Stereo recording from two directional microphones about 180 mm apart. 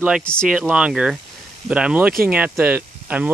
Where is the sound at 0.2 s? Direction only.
5° left (ahead or behind).